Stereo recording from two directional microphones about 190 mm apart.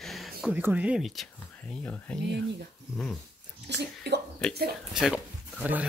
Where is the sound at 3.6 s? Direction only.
65° right (ahead or behind).